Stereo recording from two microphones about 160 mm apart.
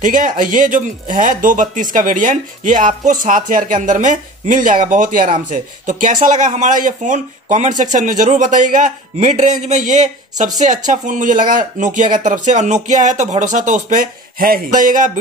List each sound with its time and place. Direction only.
0.0 s speech: 55° right (ahead or behind)